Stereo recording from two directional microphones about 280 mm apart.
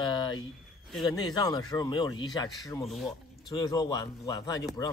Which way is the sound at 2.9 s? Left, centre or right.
Centre.